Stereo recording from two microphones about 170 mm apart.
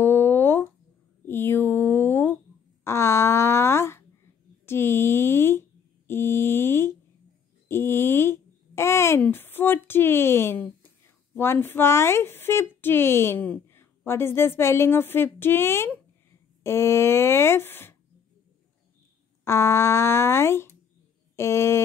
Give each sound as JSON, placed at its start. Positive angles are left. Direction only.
{"t": 0.0, "sound": "a sound", "side_deg": 15}
{"t": 11.3, "sound": "speech", "side_deg": 15}
{"t": 19.4, "sound": "speech", "side_deg": 15}